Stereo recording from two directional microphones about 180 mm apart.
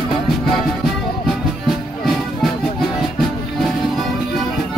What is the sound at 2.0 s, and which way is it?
Music, centre (ahead or behind).